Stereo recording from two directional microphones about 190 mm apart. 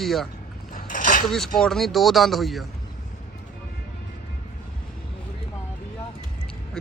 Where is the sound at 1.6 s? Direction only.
Centre (ahead or behind).